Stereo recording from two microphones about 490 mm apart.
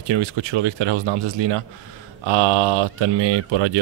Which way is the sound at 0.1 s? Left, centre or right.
Right.